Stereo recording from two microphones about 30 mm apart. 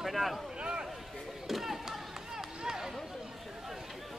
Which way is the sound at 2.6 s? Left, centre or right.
Centre.